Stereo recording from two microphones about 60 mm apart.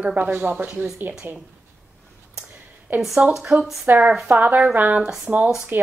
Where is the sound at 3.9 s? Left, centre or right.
Right.